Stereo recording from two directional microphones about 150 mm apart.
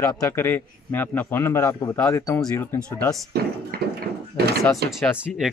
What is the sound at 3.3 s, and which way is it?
Speech, 90° right.